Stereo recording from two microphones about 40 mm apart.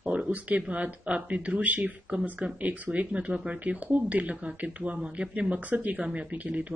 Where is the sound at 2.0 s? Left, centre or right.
Right.